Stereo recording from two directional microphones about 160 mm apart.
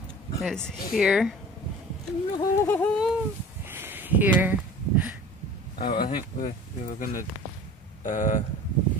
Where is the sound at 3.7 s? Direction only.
15° right (ahead or behind).